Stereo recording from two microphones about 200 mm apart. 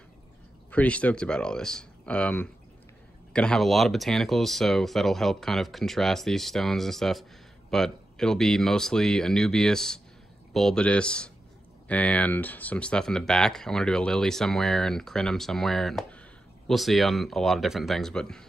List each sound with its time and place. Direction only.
0.7 s speech: 5° left (ahead or behind)